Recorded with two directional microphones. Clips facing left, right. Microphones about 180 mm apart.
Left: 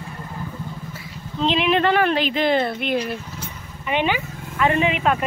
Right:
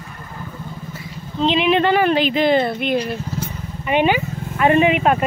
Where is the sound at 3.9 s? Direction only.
50° right (ahead or behind).